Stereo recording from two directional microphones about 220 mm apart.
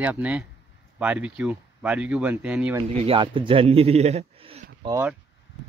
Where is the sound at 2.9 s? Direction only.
25° right (ahead or behind).